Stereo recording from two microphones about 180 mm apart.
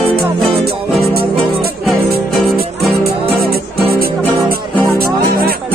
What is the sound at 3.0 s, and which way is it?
Music, 60° right (ahead or behind).